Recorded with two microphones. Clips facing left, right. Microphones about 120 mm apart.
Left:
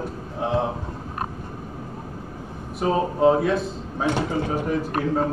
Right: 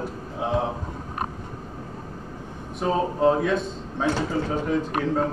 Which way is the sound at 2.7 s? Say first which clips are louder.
Left 2 dB; 5° left (ahead or behind).